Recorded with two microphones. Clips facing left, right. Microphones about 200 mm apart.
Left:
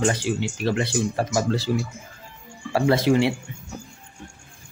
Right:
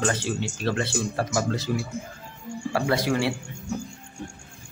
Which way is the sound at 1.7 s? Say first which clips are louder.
Left 2 dB; 30° left (ahead or behind).